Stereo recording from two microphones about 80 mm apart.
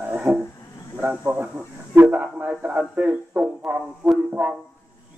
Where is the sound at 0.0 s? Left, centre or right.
Centre.